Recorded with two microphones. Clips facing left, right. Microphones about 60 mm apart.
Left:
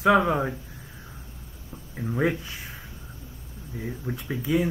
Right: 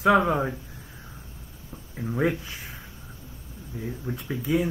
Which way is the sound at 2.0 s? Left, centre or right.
Centre.